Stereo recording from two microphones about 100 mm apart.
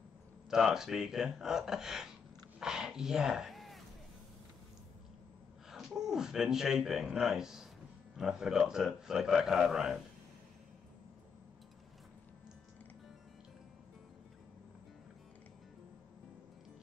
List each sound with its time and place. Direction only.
0.5 s a man's voice: 5° right (ahead or behind)
2.6 s cat: 5° right (ahead or behind)
5.7 s a man's voice: 5° right (ahead or behind)